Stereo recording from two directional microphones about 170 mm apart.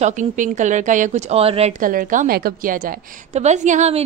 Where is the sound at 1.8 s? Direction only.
55° right (ahead or behind).